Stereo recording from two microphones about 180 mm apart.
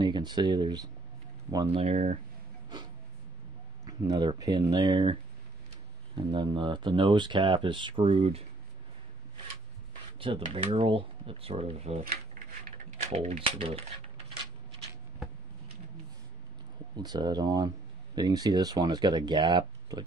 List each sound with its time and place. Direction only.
0.0 s speech: 25° right (ahead or behind)
3.8 s speech: 25° right (ahead or behind)
6.3 s speech: 25° right (ahead or behind)
10.1 s speech: 30° right (ahead or behind)
16.9 s speech: 20° right (ahead or behind)